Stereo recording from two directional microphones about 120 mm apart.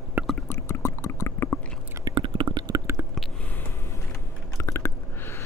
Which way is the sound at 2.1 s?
45° right (ahead or behind).